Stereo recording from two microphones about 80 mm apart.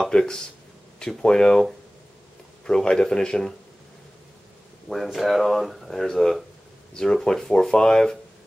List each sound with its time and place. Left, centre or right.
0.0 s speech: centre
4.8 s speech: centre